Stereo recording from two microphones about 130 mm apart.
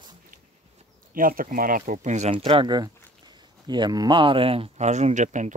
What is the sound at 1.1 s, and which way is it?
Speech, 90° right.